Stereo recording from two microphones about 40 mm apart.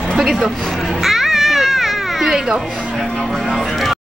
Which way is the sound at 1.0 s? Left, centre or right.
Centre.